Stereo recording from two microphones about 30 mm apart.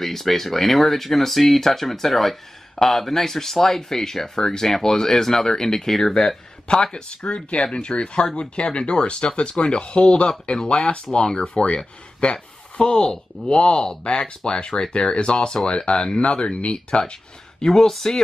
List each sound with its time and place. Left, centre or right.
0.0 s speech: centre; by 16.7 s left
17.6 s speech: centre